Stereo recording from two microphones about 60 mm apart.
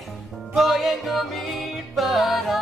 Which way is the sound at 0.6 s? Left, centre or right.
Centre.